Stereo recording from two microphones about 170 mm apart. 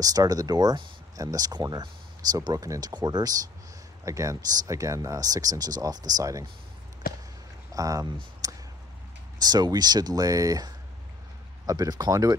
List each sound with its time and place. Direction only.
0.0 s speech: 20° right (ahead or behind)
7.0 s basketball bounce: 60° left (ahead or behind)
7.7 s speech: 20° right (ahead or behind)
8.4 s clicking: 20° right (ahead or behind)
9.4 s speech: 25° right (ahead or behind)